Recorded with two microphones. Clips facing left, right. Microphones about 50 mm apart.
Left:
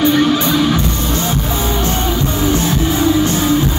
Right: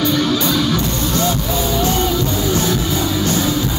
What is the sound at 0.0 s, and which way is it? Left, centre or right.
Music, left.